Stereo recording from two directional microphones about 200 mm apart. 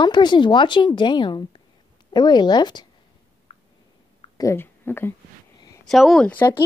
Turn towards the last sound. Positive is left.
turn(degrees=10)  # may be behind; listen again after turning